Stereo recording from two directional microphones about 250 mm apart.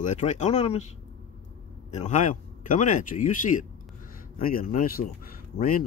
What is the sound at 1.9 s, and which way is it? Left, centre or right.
Speech, left.